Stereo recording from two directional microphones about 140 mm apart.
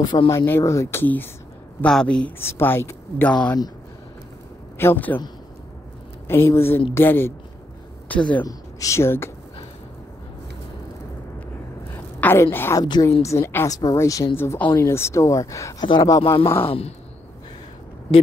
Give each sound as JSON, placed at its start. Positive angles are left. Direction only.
{"t": 0.0, "sound": "speech", "side_deg": 30}
{"t": 0.5, "sound": "speech", "side_deg": 20}
{"t": 4.7, "sound": "speech", "side_deg": 15}
{"t": 6.2, "sound": "speech", "side_deg": 20}
{"t": 8.5, "sound": "speech", "side_deg": 25}
{"t": 11.9, "sound": "a sound", "side_deg": 15}
{"t": 12.8, "sound": "speech", "side_deg": 30}
{"t": 16.6, "sound": "a sound", "side_deg": 45}